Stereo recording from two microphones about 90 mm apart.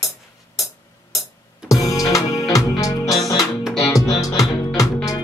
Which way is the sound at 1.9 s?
40° left (ahead or behind).